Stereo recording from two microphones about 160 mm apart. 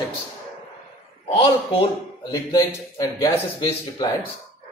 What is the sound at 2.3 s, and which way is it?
Speech, 25° left (ahead or behind).